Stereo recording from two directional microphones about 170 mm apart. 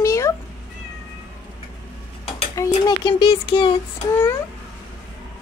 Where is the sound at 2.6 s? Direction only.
20° left (ahead or behind).